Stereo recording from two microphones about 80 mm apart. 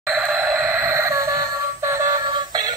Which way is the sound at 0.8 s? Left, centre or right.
Right.